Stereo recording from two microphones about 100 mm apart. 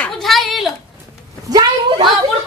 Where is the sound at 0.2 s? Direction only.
Centre (ahead or behind).